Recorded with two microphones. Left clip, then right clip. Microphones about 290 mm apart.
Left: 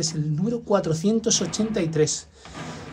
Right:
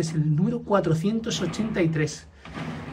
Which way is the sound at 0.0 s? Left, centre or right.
Centre.